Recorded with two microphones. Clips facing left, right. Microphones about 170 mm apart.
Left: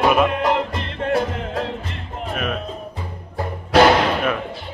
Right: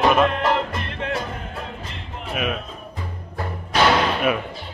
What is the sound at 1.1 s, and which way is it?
Music, 70° left (ahead or behind).